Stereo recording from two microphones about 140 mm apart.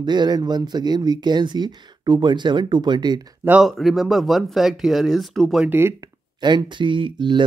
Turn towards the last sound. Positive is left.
turn(degrees=-35)  # may be behind; listen again after turning